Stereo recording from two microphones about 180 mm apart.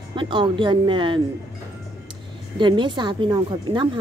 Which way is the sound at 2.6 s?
25° right (ahead or behind).